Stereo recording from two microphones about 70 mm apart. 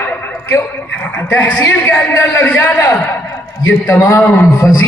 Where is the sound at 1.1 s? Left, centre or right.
Left.